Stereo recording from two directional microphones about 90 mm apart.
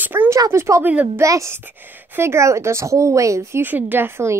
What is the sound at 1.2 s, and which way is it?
A woman's voice, 35° right (ahead or behind).